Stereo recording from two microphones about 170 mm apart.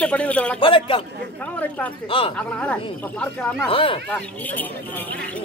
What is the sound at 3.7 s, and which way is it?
Speech, 30° left (ahead or behind).